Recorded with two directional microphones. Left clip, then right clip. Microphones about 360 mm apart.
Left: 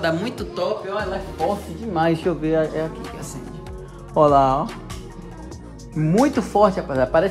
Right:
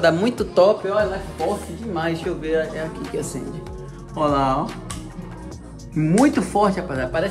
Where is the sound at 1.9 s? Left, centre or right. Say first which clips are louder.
Left 4 dB; left.